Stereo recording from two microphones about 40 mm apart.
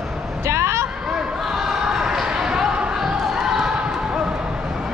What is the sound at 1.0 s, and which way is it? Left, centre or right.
Basketball bounce, centre.